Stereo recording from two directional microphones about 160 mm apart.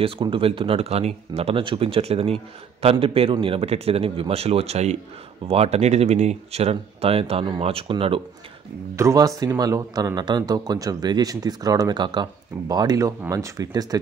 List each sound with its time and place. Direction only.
0.0 s speech: 35° right (ahead or behind)
8.9 s speech: 20° right (ahead or behind)